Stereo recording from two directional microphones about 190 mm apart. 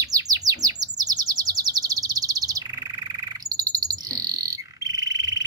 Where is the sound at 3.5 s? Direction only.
20° right (ahead or behind).